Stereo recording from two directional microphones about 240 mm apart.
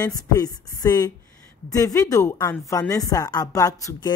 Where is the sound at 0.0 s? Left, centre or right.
Centre.